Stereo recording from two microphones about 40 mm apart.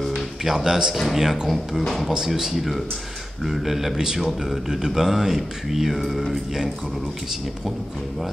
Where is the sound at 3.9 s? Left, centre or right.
Centre.